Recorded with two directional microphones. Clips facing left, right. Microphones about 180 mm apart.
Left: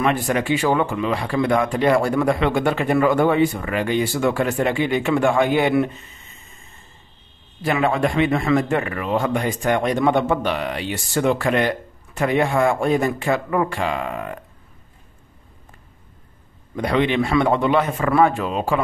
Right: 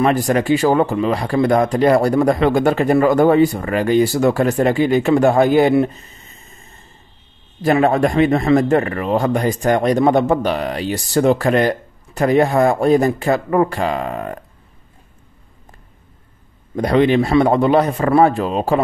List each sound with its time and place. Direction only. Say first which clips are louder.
0.0 s a man's voice: right 5 dB; 40° right (ahead or behind)
7.6 s a man's voice: right 5 dB; 40° right (ahead or behind)
16.7 s a man's voice: right 5 dB; 40° right (ahead or behind)